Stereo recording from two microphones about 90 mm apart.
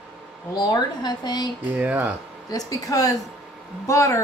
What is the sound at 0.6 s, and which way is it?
Speech, 55° left (ahead or behind).